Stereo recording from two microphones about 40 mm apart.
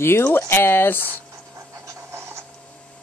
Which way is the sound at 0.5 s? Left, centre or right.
Left.